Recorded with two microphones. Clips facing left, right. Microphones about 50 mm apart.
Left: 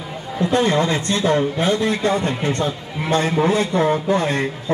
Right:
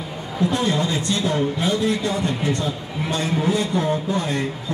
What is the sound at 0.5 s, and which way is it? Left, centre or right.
A man's voice, left.